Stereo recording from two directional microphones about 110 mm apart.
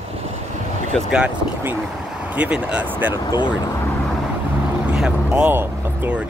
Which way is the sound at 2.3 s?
10° right (ahead or behind).